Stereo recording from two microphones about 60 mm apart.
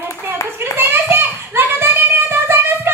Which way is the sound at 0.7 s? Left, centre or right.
Right.